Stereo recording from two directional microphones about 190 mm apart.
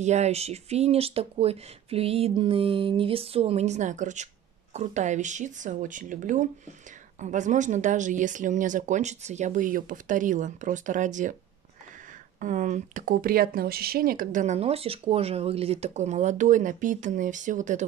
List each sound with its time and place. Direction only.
0.0 s speech: 35° right (ahead or behind)
12.4 s speech: 40° right (ahead or behind)